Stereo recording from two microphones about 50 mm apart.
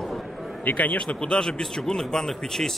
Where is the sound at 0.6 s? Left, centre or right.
Left.